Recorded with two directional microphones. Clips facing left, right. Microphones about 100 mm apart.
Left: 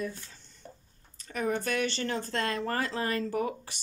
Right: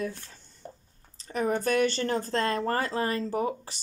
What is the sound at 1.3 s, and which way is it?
Speech, 35° right (ahead or behind).